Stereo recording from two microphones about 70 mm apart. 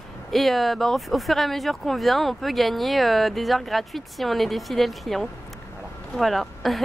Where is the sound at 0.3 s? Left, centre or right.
Centre.